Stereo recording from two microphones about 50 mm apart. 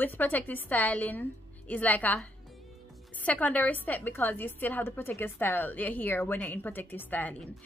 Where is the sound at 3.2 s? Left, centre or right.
Left.